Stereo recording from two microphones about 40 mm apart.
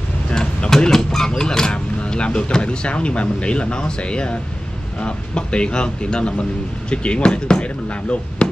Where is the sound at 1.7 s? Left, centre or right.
Left.